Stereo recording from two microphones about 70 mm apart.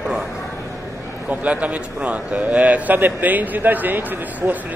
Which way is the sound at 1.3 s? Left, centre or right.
Right.